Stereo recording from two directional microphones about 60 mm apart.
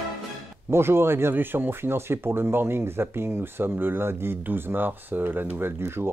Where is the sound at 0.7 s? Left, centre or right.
Right.